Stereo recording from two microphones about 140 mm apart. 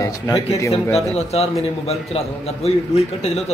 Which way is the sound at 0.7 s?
45° left (ahead or behind).